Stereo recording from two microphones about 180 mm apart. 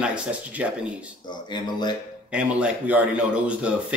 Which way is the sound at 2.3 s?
5° right (ahead or behind).